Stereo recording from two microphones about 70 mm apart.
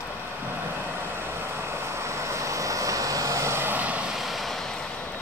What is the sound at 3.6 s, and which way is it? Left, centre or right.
Vehicle, right.